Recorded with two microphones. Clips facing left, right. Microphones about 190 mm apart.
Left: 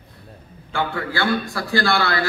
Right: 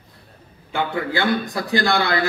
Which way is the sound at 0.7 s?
20° right (ahead or behind).